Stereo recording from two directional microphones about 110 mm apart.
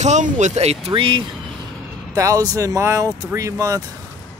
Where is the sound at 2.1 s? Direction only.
30° right (ahead or behind).